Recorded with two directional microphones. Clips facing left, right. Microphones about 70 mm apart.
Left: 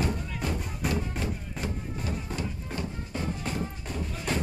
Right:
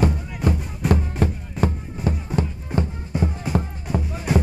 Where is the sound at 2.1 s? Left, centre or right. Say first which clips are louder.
Right 11 dB; right.